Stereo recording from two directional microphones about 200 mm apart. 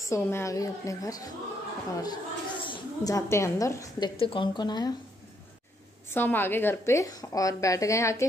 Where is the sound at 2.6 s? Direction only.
20° left (ahead or behind).